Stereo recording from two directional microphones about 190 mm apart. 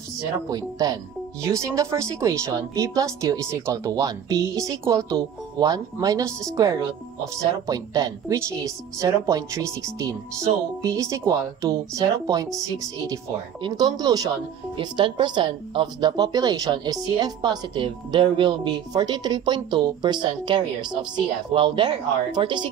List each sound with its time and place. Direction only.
0.5 s speech: 20° right (ahead or behind)